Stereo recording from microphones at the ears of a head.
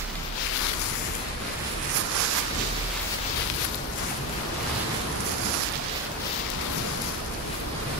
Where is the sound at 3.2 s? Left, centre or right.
Left.